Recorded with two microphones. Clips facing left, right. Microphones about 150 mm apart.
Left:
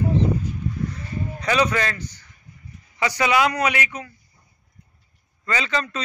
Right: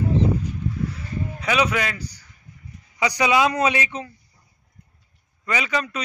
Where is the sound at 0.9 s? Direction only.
5° right (ahead or behind).